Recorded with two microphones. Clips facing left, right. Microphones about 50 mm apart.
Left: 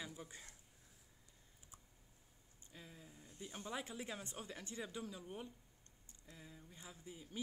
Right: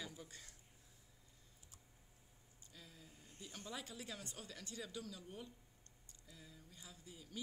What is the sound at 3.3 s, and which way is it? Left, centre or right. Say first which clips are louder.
Speech: left 4 dB; left.